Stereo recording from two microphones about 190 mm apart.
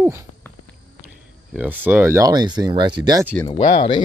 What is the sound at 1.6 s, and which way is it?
Speech, 10° right (ahead or behind).